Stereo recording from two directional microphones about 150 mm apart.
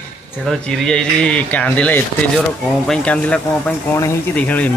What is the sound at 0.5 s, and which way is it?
Speech, 5° left (ahead or behind).